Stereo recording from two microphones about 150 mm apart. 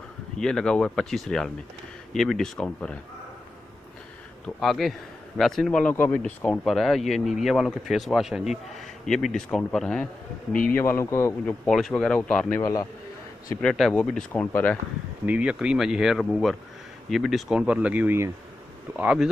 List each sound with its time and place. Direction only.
0.4 s speech: 5° left (ahead or behind)
4.6 s a man's voice: centre (ahead or behind); by 11.3 s 20° left (ahead or behind)
11.4 s speech: 5° left (ahead or behind)
12.5 s a man's voice: 25° left (ahead or behind)
13.6 s speech: 5° left (ahead or behind)
15.2 s speech: 10° right (ahead or behind)